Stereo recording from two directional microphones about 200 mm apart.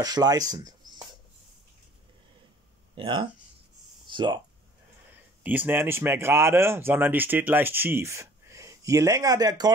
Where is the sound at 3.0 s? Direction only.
25° right (ahead or behind).